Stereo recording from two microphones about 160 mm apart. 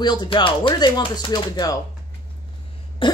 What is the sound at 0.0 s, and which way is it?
Speech, 30° left (ahead or behind).